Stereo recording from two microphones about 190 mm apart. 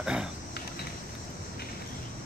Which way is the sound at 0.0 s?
5° right (ahead or behind).